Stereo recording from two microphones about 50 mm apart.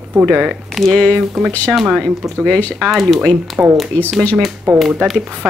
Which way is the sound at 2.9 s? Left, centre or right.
Centre.